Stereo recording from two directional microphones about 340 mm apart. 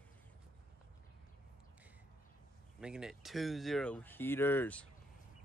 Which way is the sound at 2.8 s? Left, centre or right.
Centre.